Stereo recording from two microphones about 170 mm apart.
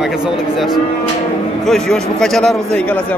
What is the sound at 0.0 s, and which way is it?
A man's voice, 5° right (ahead or behind).